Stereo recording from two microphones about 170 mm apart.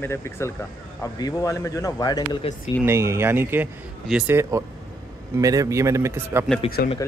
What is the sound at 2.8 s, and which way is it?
A man's voice, 15° right (ahead or behind).